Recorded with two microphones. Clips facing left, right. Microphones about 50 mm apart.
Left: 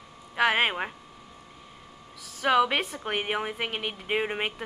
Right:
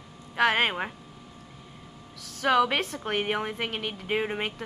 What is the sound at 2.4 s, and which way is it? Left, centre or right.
A woman's voice, centre.